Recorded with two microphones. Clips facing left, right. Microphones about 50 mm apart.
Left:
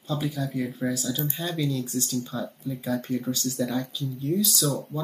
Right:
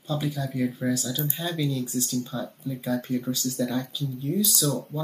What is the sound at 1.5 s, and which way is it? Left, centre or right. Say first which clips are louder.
Speech: right 1 dB; left.